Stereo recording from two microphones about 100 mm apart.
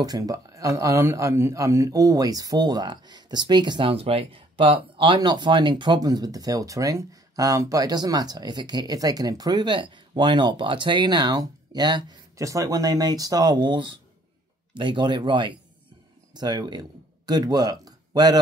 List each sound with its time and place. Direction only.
0.0 s speech: 40° right (ahead or behind)
3.9 s speech: 70° right (ahead or behind); by 12.2 s 45° right (ahead or behind)
12.4 s speech: 35° right (ahead or behind)